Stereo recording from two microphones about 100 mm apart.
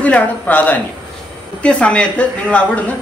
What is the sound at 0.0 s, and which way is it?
Speech, 15° left (ahead or behind).